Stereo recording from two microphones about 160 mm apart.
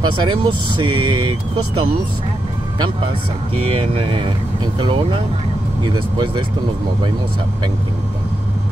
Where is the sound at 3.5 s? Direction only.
35° right (ahead or behind).